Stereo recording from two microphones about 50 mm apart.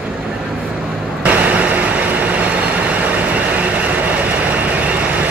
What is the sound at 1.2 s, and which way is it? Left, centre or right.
Vehicle, right.